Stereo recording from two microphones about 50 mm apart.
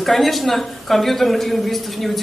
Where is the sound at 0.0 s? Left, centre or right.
Centre.